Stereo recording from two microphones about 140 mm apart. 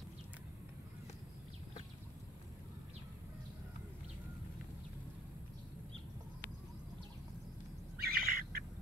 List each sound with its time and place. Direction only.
8.0 s bird: 90° right